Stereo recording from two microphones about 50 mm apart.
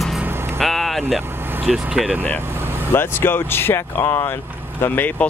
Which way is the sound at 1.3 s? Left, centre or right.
Right.